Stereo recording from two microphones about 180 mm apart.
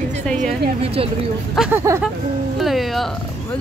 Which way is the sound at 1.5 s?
5° right (ahead or behind).